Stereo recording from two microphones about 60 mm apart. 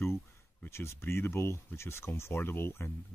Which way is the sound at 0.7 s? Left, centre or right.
Left.